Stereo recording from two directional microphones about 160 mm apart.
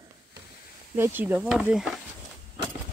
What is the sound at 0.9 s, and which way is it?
Speech, 15° right (ahead or behind).